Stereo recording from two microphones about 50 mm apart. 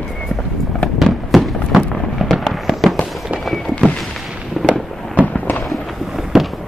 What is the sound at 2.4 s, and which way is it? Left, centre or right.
Fireworks, centre.